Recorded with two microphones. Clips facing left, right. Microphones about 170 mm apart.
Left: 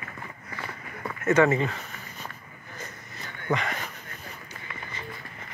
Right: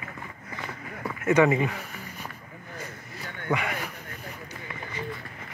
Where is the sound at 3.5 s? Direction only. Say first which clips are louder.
Even; 10° right (ahead or behind).